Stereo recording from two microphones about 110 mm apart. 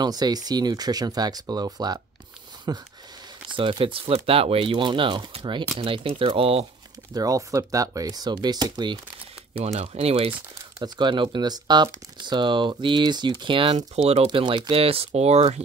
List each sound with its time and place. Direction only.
0.0 s speech: 40° right (ahead or behind)
3.5 s speech: 50° right (ahead or behind)
7.2 s speech: 30° right (ahead or behind)
9.6 s speech: 60° right (ahead or behind)
10.8 s speech: 45° right (ahead or behind); by 15.6 s 75° right (ahead or behind)